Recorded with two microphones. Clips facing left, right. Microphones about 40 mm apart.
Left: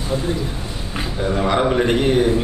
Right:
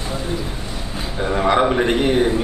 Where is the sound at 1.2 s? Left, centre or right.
Centre.